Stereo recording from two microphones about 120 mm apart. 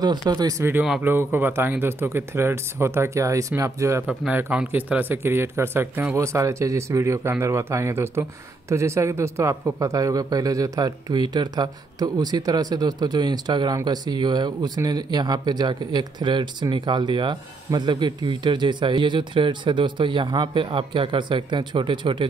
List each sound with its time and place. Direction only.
0.0 s speech: 35° right (ahead or behind)
1.0 s a man's voice: 15° right (ahead or behind)
4.1 s a man's voice: 5° right (ahead or behind); by 22.2 s 45° right (ahead or behind)